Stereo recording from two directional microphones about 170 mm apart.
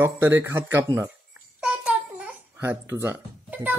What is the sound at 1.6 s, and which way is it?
Babbling, 5° right (ahead or behind).